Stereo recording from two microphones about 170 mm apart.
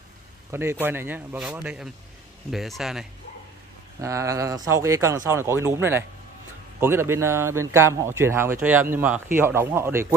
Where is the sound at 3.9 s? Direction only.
20° right (ahead or behind).